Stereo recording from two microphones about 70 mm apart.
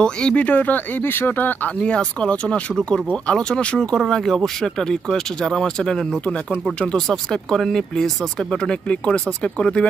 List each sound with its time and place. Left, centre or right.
0.0 s speech: centre
1.8 s speech: centre